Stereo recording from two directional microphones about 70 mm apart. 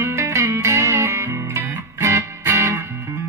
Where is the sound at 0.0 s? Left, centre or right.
Right.